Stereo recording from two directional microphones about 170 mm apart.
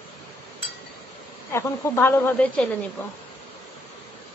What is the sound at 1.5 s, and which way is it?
Speech, 15° left (ahead or behind).